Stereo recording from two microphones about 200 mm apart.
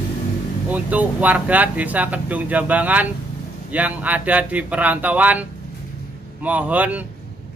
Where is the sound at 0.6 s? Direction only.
5° right (ahead or behind).